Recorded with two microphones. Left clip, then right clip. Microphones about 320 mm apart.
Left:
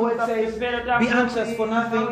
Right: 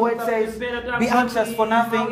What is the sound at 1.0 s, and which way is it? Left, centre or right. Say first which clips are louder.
Speech: right 2 dB; centre.